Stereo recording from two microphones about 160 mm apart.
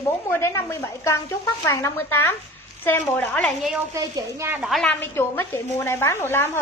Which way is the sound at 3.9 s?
20° right (ahead or behind).